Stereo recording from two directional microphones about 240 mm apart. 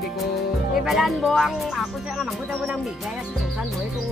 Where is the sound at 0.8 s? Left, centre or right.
Centre.